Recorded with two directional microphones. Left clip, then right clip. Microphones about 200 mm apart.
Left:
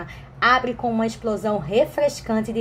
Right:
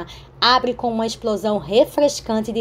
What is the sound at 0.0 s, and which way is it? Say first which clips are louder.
A woman's voice: right 2 dB; 25° right (ahead or behind).